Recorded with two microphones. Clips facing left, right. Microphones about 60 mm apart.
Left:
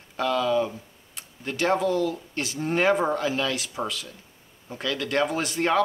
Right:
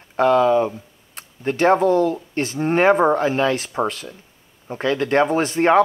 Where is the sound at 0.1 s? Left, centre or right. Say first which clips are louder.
Right 8 dB; right.